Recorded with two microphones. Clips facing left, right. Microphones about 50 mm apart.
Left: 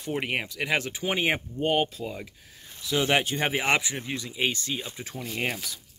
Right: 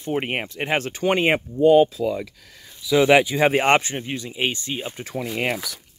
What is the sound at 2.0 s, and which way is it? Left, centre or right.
Speech, right.